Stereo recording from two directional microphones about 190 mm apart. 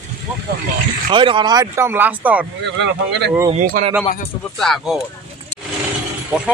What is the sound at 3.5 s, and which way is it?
Speech, 40° right (ahead or behind).